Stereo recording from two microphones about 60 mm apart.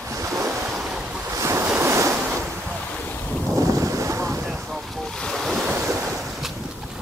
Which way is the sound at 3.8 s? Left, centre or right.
Right.